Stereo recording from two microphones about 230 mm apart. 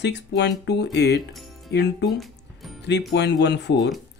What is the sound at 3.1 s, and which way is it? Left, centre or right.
Speech, left.